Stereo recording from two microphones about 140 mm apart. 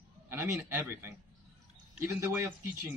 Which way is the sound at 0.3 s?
15° right (ahead or behind).